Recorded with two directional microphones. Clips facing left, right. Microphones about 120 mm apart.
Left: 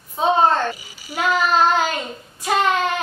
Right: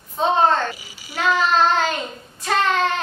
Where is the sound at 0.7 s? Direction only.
45° left (ahead or behind).